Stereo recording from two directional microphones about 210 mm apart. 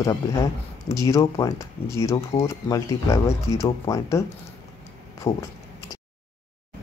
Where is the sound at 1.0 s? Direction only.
15° left (ahead or behind).